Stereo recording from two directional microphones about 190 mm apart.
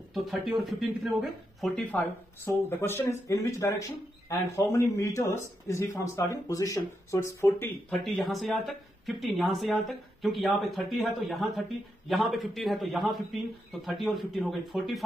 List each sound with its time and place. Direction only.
0.1 s speech: centre (ahead or behind); by 7.7 s 15° left (ahead or behind)
8.0 s speech: centre (ahead or behind)